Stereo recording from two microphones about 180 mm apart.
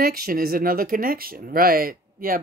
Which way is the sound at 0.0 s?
55° right (ahead or behind).